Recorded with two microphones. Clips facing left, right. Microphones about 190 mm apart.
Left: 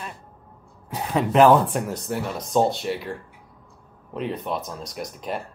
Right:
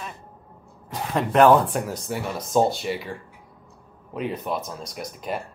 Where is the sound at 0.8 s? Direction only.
5° left (ahead or behind).